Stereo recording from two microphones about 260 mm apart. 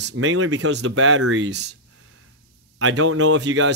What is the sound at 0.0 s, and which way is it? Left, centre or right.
Speech, right.